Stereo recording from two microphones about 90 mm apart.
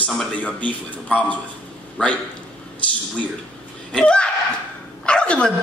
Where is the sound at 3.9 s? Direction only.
10° left (ahead or behind).